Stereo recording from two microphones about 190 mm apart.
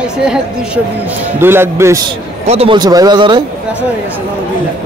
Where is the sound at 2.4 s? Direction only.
30° right (ahead or behind).